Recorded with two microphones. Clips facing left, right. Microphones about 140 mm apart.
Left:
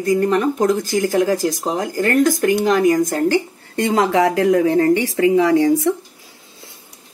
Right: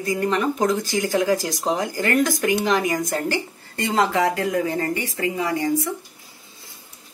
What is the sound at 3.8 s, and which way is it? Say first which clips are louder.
Speech: left 5 dB; 65° left (ahead or behind).